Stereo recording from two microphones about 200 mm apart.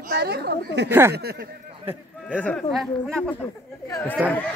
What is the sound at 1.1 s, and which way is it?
Speech, 50° right (ahead or behind).